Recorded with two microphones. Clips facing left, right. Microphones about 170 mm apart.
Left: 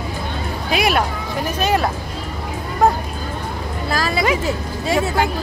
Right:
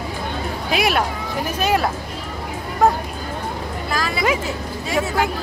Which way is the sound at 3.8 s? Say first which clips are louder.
Left 4 dB; 35° left (ahead or behind).